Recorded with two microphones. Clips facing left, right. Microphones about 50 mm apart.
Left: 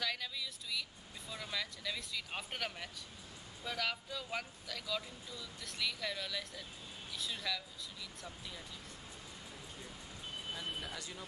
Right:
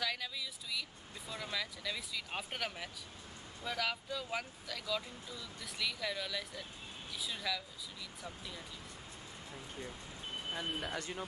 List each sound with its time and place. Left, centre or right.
0.0 s vehicle: centre
1.3 s speech: centre
10.7 s speech: centre
11.0 s speech: right